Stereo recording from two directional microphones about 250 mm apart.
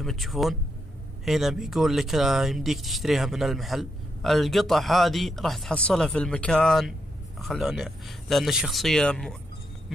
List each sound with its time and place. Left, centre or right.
0.0 s speech: centre